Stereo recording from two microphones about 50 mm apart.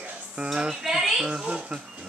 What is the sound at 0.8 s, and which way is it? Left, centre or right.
Speech, centre.